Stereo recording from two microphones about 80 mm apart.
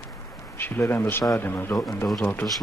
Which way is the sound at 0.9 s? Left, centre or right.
Left.